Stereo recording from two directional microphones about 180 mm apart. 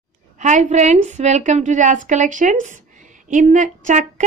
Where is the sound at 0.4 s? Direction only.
40° right (ahead or behind).